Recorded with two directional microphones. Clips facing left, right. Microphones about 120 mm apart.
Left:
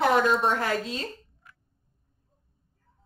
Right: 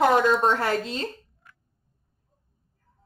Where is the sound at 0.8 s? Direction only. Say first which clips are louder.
Right 3 dB; 30° right (ahead or behind).